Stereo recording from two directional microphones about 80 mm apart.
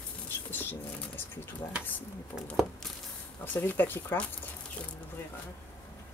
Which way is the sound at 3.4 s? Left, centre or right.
Left.